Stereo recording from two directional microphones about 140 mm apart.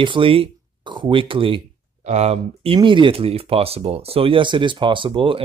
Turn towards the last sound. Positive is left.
turn(degrees=-40)  # may be behind; listen again after turning